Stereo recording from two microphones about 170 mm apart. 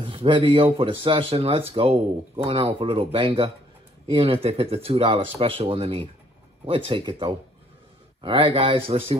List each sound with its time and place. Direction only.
0.0 s speech: 30° right (ahead or behind)